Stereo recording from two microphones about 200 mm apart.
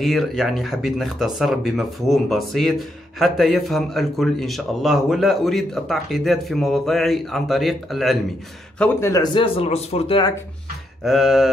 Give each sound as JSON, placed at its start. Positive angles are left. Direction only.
{"t": 0.0, "sound": "a man's voice", "side_deg": 0}
{"t": 11.1, "sound": "a man's voice", "side_deg": 0}